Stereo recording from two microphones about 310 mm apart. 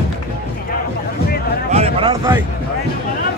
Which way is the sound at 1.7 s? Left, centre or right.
Centre.